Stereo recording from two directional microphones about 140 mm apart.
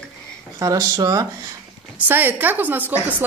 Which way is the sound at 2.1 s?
15° right (ahead or behind).